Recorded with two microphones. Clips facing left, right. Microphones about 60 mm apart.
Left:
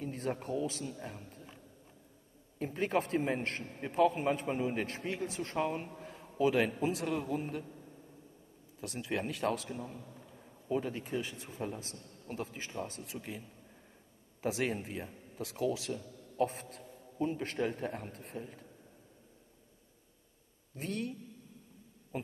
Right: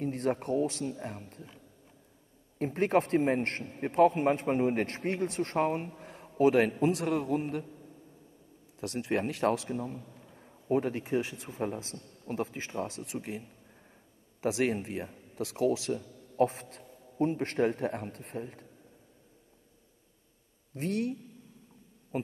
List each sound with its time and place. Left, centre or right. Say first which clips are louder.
0.0 s a man's voice: right 6 dB; right
1.0 s speech: right 5 dB; right
2.6 s a man's voice: right 6 dB; right
5.9 s a sound: right 3 dB; right
6.4 s speech: right 5 dB; right
7.1 s a man's voice: right 5 dB; right
8.7 s a man's voice: right 6 dB; right
11.0 s speech: right 6 dB; right
13.2 s a man's voice: right 5 dB; right
15.9 s a man's voice: right 6 dB; right
20.7 s speech: right 6 dB; right